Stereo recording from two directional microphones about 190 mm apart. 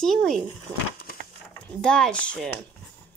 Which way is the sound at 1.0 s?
55° left (ahead or behind).